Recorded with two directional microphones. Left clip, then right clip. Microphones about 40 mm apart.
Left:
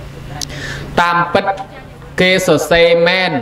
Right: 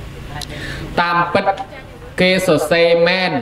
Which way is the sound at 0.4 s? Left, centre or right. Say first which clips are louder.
Left 3 dB; left.